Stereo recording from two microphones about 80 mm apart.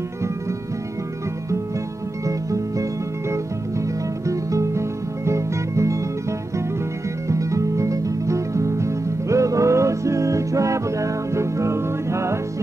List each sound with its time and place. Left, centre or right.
2.2 s music: right
7.2 s music: right